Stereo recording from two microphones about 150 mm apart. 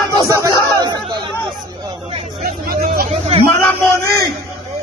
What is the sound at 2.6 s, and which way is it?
Vehicle, 80° right.